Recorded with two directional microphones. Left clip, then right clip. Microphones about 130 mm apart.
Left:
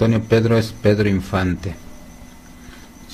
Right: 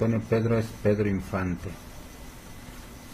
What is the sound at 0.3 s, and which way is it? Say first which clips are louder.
Speech: left 10 dB; 25° left (ahead or behind).